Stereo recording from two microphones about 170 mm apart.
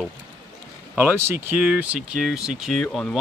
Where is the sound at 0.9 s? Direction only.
10° right (ahead or behind).